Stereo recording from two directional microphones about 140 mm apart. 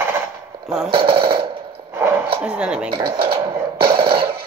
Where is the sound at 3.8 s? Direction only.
40° right (ahead or behind).